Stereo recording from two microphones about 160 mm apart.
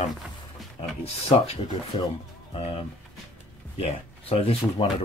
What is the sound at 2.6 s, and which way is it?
Speech, 40° left (ahead or behind).